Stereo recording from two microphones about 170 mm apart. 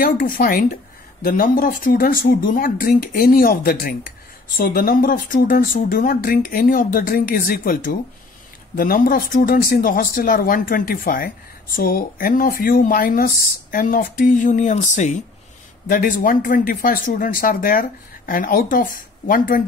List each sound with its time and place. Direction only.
0.0 s speech: 55° left (ahead or behind)